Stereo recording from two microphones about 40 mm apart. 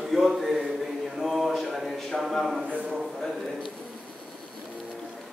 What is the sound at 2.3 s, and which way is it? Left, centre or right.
Speech, centre.